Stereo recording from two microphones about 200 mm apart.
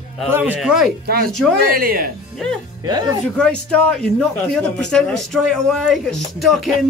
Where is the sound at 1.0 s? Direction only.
45° right (ahead or behind).